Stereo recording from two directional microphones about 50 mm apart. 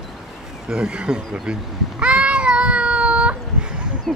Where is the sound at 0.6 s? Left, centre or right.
Centre.